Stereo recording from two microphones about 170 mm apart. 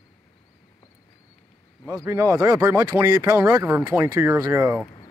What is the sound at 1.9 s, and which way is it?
Speech, 15° right (ahead or behind).